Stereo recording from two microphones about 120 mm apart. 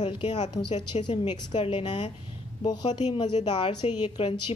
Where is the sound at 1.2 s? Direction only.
35° left (ahead or behind).